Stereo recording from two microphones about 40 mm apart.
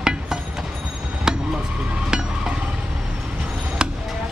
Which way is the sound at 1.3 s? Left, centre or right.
Centre.